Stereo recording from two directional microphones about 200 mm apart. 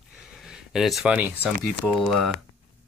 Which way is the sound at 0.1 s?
5° right (ahead or behind).